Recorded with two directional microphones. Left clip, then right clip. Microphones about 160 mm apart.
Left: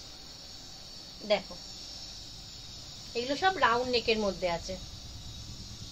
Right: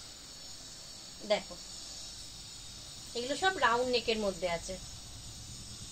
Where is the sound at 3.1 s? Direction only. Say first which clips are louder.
Left 3 dB; 5° left (ahead or behind).